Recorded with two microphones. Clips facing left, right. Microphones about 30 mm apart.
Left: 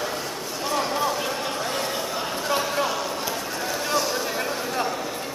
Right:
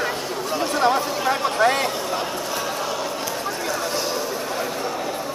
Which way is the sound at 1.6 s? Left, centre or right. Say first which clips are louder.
Right 9 dB; right.